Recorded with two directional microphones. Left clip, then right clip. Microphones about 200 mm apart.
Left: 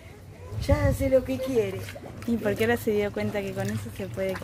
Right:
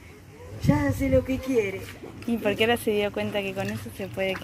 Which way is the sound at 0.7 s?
40° left (ahead or behind).